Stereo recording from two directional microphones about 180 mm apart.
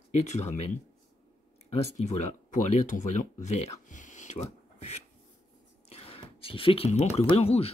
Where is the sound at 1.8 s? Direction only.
40° left (ahead or behind).